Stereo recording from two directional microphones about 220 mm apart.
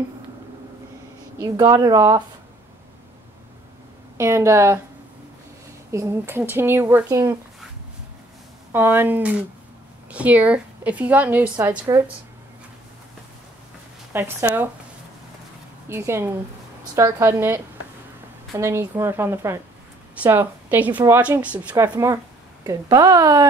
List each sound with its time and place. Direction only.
1.4 s a woman's voice: 15° right (ahead or behind)
4.2 s a woman's voice: 10° right (ahead or behind)
5.9 s a woman's voice: 10° right (ahead or behind)
8.7 s a woman's voice: 10° right (ahead or behind)
14.1 s a woman's voice: 10° right (ahead or behind)
15.9 s a woman's voice: 10° right (ahead or behind)